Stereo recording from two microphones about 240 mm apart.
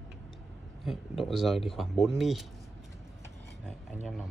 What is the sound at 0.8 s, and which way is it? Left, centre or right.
Speech, centre.